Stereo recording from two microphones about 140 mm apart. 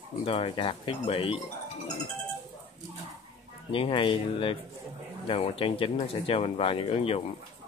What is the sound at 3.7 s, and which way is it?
Speech, 40° left (ahead or behind).